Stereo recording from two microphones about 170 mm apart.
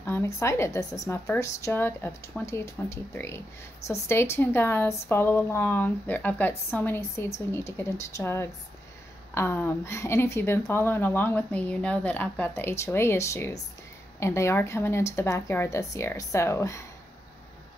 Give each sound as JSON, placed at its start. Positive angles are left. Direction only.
{"t": 0.0, "sound": "speech", "side_deg": 15}